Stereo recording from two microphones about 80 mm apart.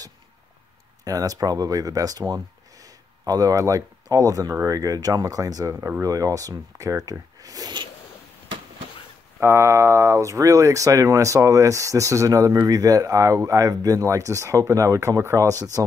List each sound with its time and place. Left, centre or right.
1.0 s speech: right
5.8 s speech: right
6.0 s speech: right
9.4 s speech: right